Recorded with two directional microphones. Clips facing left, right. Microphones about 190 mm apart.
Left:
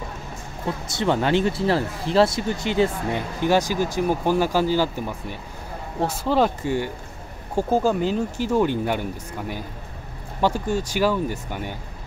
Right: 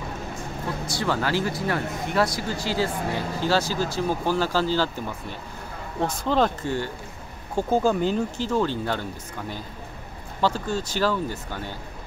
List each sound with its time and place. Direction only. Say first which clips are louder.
0.8 s speech: left 5 dB; 25° left (ahead or behind)
10.4 s speech: left 3 dB; 15° left (ahead or behind)